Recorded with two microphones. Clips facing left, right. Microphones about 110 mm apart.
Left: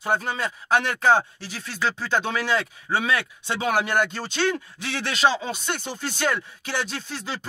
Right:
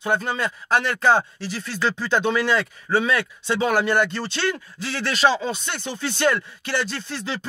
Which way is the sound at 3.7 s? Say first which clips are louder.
Right 1 dB; 10° left (ahead or behind).